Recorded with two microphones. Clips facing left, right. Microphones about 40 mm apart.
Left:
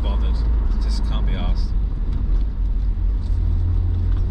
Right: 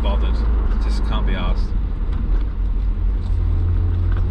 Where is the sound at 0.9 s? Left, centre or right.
Right.